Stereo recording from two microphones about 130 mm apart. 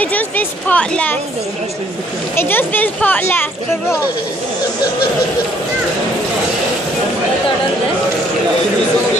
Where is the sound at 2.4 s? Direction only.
15° left (ahead or behind).